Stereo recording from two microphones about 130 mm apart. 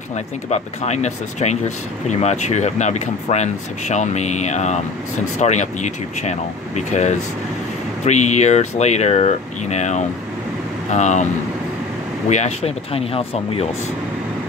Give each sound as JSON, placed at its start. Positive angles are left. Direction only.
{"t": 0.5, "sound": "speech", "side_deg": 60}
{"t": 12.3, "sound": "speech", "side_deg": 60}